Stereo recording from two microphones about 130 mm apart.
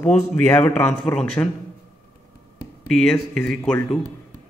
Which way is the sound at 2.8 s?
5° left (ahead or behind).